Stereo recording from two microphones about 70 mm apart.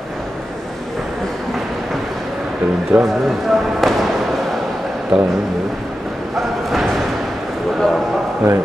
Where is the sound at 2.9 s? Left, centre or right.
Right.